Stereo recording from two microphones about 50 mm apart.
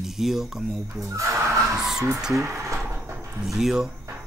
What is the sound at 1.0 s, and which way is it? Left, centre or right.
Speech, right.